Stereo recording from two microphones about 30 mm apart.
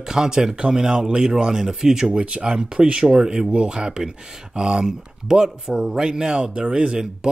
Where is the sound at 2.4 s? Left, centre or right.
Right.